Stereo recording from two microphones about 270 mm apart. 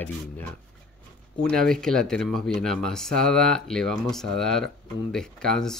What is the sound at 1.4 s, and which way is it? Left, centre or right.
Speech, centre.